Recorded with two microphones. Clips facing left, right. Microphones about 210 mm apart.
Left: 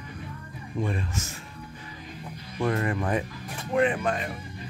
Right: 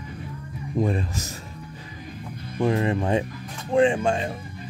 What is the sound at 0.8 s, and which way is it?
Speech, 35° right (ahead or behind).